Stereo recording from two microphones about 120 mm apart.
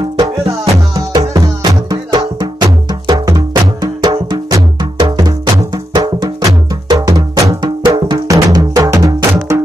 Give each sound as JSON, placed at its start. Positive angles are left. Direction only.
{"t": 0.5, "sound": "music", "side_deg": -25}